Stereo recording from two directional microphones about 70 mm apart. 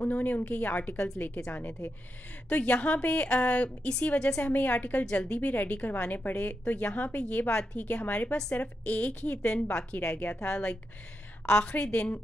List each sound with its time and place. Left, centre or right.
0.0 s a woman's voice: left